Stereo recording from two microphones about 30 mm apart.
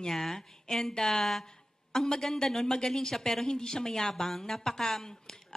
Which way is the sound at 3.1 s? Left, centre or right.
Centre.